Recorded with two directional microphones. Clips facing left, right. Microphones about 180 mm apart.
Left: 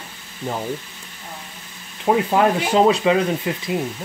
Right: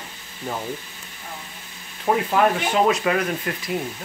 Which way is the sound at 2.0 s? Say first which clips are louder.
Left 2 dB; 25° left (ahead or behind).